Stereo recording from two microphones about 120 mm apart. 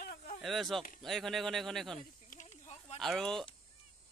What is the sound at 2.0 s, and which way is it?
Snake, 90° left.